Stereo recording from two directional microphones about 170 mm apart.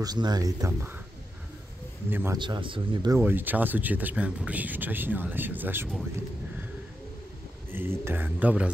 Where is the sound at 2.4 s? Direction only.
30° right (ahead or behind).